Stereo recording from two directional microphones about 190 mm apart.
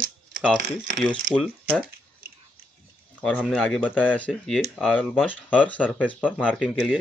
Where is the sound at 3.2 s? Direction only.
Centre (ahead or behind).